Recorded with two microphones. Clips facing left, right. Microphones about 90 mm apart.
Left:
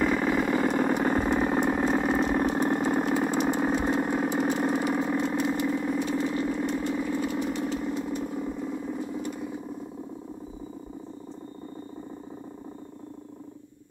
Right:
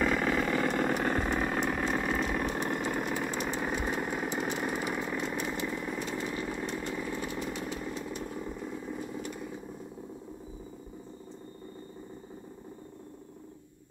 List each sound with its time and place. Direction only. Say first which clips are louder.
0.0 s vehicle: left 4 dB; 5° left (ahead or behind); by 4.3 s 25° left (ahead or behind)
4.6 s engine: left 7 dB; 20° left (ahead or behind)
5.7 s vehicle: left 8 dB; 20° left (ahead or behind)
6.8 s engine: left 7 dB; 20° left (ahead or behind)
7.2 s vehicle: left 7 dB; 20° left (ahead or behind)